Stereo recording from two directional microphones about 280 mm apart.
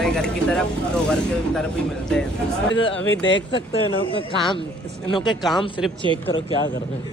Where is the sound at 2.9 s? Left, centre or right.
Left.